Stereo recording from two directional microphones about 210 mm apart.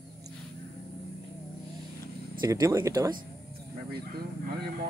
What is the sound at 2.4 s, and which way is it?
Speech, 15° right (ahead or behind).